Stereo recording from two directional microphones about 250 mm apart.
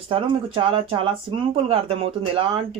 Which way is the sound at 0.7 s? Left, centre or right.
Right.